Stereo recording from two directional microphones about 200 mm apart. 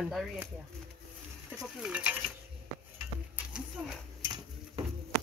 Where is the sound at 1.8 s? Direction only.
5° right (ahead or behind).